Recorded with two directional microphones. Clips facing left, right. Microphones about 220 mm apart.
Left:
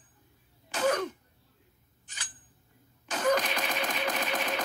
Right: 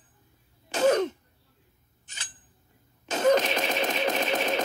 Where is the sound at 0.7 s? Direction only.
25° right (ahead or behind).